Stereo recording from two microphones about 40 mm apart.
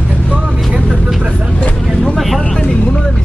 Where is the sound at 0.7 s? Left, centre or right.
Right.